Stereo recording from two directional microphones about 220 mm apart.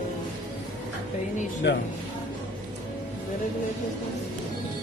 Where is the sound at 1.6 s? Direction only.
55° left (ahead or behind).